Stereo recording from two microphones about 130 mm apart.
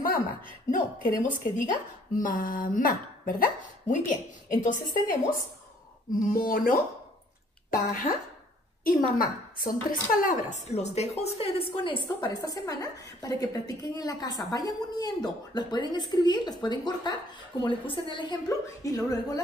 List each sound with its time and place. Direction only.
0.7 s a woman's voice: 90° left
6.2 s a woman's voice: 90° left
8.8 s a woman's voice: 90° left
10.7 s speech: 55° left (ahead or behind); by 19.4 s 30° left (ahead or behind)